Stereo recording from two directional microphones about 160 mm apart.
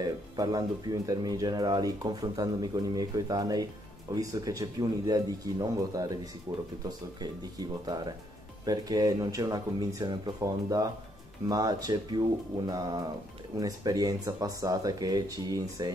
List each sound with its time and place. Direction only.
0.0 s speech: 25° right (ahead or behind)
7.2 s speech: 25° right (ahead or behind)